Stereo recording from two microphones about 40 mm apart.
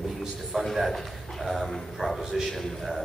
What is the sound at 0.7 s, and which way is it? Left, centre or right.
A man's voice, centre.